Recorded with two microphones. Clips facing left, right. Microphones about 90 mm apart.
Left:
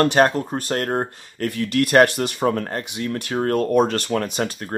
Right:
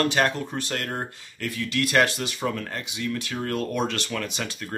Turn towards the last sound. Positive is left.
turn(degrees=40)  # may be behind; listen again after turning